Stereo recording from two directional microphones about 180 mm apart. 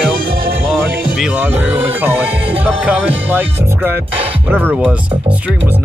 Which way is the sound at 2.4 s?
30° right (ahead or behind).